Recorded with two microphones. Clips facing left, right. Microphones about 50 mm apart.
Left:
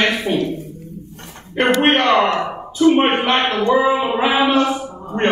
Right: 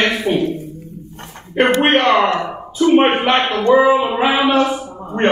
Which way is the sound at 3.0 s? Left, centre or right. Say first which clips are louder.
Right 2 dB; centre.